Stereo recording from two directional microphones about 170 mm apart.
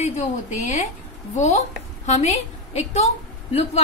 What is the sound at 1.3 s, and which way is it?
A woman's voice, 45° left (ahead or behind).